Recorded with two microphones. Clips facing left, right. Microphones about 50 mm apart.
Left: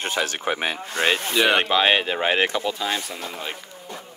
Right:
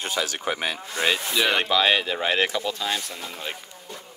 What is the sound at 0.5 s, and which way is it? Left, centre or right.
Speech, left.